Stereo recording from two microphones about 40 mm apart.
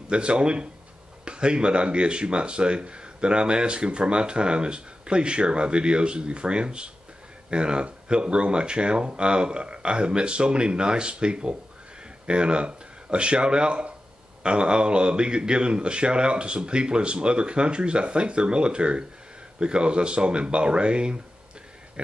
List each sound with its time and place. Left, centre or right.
0.1 s speech: right